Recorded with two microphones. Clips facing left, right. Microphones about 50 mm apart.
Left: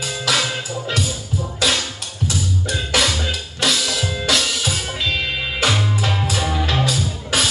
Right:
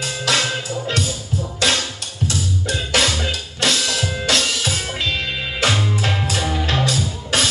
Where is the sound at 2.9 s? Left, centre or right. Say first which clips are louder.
Even; right.